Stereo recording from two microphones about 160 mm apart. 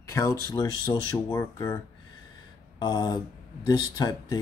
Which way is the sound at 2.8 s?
25° left (ahead or behind).